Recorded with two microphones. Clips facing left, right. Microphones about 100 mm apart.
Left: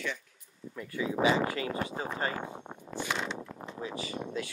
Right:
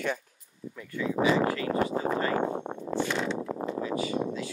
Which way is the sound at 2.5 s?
55° right (ahead or behind).